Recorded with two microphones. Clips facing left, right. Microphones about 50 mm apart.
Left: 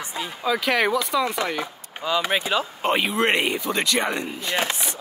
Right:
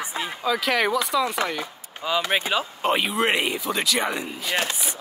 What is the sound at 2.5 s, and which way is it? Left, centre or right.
Speech, centre.